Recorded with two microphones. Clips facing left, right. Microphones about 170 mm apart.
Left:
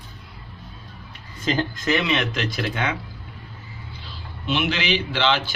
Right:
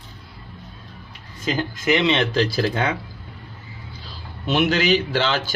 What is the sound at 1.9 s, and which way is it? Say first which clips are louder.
A man's voice: right 5 dB; 25° right (ahead or behind).